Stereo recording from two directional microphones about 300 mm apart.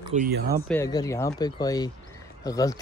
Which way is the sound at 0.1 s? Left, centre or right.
Right.